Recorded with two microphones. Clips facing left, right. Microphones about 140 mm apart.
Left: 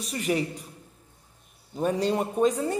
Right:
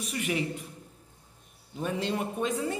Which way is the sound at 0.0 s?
35° left (ahead or behind).